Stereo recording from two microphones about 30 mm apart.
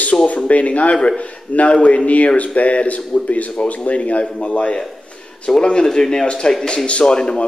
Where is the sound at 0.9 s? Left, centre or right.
Left.